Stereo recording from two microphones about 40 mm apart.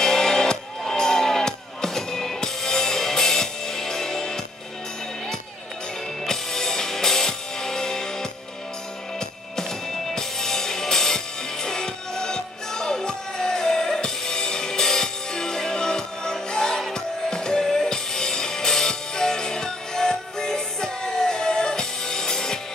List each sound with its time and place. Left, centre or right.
0.0 s music: centre
6.2 s music: centre
9.6 s music: centre